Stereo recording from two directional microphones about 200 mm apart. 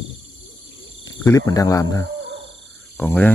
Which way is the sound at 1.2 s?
15° left (ahead or behind).